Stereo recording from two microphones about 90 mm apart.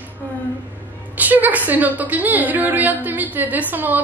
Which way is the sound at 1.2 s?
20° right (ahead or behind).